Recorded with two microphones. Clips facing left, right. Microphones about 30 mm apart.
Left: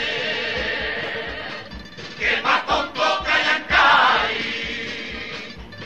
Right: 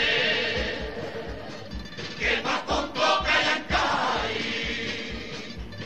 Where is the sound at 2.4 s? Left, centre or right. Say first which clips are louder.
Left 7 dB; left.